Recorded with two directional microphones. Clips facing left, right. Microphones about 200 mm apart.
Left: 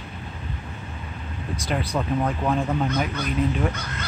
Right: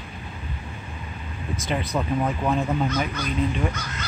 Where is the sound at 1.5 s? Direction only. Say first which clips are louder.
Even; centre (ahead or behind).